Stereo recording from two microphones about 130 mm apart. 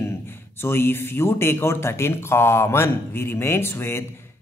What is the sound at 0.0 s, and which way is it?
A man's voice, 20° left (ahead or behind).